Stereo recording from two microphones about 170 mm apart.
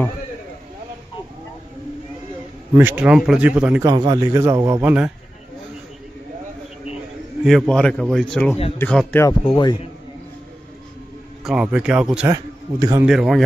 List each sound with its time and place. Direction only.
2.7 s a man's voice: 10° right (ahead or behind)
3.8 s a man's voice: 25° right (ahead or behind); by 5.1 s 10° right (ahead or behind)
7.4 s a man's voice: centre (ahead or behind)
9.5 s a man's voice: 25° left (ahead or behind)
11.4 s a man's voice: 5° right (ahead or behind)
12.3 s a man's voice: 20° right (ahead or behind)
13.0 s a man's voice: centre (ahead or behind)